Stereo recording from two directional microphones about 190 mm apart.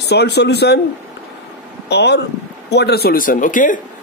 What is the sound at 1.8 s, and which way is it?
Speech, 60° left (ahead or behind).